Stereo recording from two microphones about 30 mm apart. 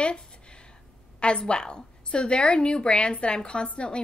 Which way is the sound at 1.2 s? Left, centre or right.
Left.